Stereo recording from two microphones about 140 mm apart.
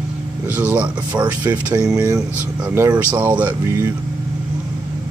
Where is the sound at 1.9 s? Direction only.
25° right (ahead or behind).